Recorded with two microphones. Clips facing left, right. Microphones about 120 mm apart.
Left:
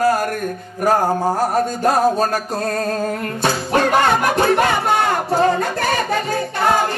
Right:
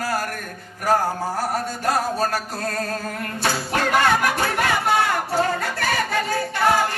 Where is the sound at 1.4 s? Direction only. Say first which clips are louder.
Left 7 dB; 20° left (ahead or behind).